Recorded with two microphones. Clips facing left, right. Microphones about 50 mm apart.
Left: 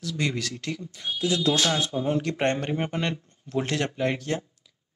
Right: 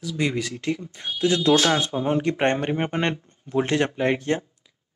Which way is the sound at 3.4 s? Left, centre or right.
Right.